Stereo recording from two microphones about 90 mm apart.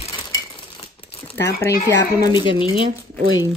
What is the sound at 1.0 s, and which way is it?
Crumpling, 90° left.